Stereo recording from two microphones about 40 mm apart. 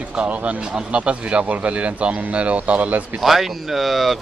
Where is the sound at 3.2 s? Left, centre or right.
Centre.